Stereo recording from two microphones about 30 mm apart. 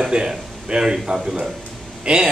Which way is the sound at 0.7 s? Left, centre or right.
Right.